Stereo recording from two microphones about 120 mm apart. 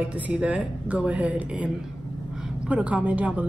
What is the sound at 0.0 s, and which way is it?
A woman's voice, 10° right (ahead or behind).